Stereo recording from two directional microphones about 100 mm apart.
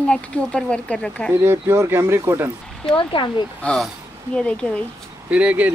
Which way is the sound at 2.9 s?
55° left (ahead or behind).